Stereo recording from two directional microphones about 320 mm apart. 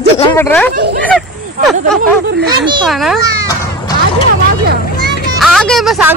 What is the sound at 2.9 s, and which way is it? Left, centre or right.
Speech, centre.